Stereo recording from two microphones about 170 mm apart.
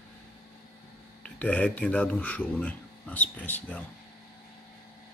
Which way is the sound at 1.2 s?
10° left (ahead or behind).